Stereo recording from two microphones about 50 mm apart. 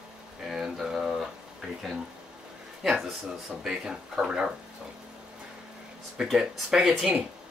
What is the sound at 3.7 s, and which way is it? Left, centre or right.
Speech, centre.